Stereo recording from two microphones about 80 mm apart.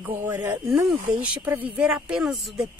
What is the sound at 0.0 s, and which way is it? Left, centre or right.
Speech, right.